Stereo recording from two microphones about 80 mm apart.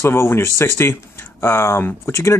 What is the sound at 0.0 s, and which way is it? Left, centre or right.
Speech, left.